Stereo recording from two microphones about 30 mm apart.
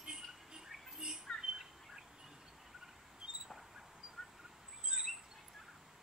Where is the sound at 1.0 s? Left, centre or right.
Right.